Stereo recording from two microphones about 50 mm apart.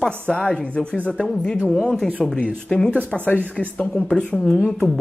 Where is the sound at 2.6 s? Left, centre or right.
Centre.